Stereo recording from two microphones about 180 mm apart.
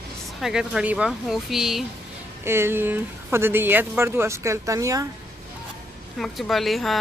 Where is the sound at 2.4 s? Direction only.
15° right (ahead or behind).